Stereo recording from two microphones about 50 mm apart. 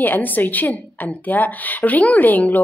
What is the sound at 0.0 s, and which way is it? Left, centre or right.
A woman's voice, left.